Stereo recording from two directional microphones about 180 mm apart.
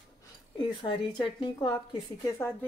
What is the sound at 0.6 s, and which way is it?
A woman's voice, 25° left (ahead or behind).